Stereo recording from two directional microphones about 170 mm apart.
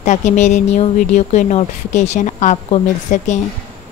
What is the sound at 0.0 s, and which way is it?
A woman's voice, 45° left (ahead or behind).